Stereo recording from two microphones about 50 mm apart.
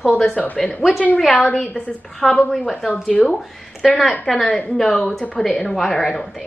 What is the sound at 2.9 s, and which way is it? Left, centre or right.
Speech, left.